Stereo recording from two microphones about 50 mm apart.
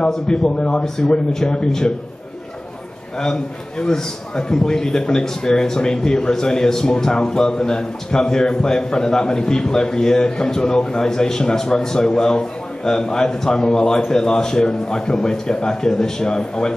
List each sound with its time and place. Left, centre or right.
0.1 s a man's voice: centre
3.2 s a man's voice: centre